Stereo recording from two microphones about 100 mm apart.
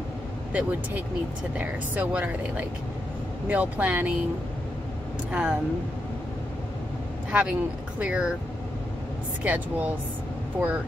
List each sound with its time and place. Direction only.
0.5 s speech: 15° right (ahead or behind)
5.3 s speech: 10° right (ahead or behind)
7.2 s speech: 10° right (ahead or behind)
9.4 s speech: 15° right (ahead or behind)